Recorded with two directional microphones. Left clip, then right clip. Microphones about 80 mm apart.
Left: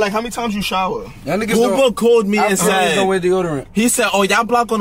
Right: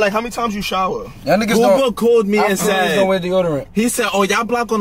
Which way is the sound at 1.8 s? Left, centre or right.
Centre.